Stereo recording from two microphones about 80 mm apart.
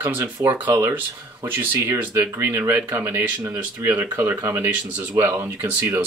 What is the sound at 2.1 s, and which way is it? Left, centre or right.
Speech, right.